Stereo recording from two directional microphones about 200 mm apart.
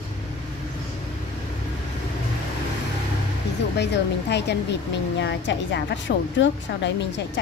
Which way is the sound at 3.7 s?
60° left (ahead or behind).